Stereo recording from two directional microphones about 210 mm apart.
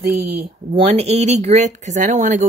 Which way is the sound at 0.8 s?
30° right (ahead or behind).